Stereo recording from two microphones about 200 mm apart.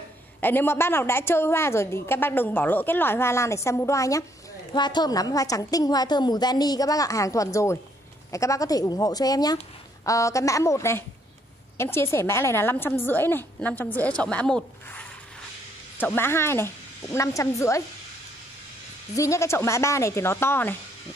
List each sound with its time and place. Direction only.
0.4 s a woman's voice: 10° left (ahead or behind)
19.1 s a woman's voice: 15° left (ahead or behind)